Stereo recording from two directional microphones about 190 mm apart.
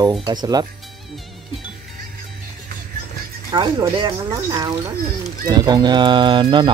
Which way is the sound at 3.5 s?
25° right (ahead or behind).